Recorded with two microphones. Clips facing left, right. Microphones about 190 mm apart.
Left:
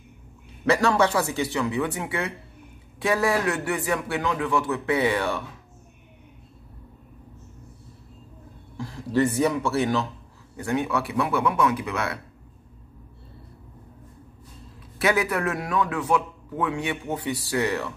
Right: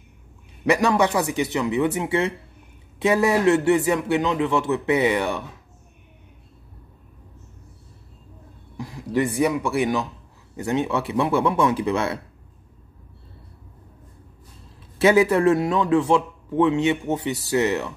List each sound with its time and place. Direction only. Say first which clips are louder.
0.7 s a man's voice: right 2 dB; 15° right (ahead or behind)
8.7 s a man's voice: even; 15° right (ahead or behind)
15.0 s a man's voice: right 7 dB; 25° right (ahead or behind)